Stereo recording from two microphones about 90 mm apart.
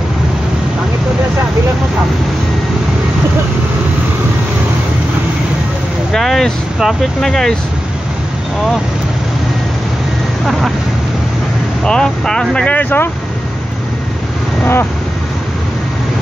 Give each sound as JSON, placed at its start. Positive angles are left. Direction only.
{"t": 6.1, "sound": "speech", "side_deg": 5}
{"t": 11.8, "sound": "speech", "side_deg": 5}
{"t": 14.6, "sound": "vehicle", "side_deg": 25}